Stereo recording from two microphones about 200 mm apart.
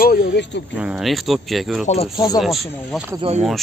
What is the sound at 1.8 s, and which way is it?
Speech, 35° left (ahead or behind).